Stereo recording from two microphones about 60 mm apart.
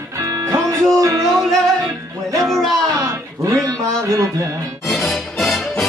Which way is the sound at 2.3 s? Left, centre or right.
Right.